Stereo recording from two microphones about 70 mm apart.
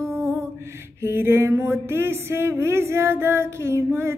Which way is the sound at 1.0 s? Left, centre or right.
Right.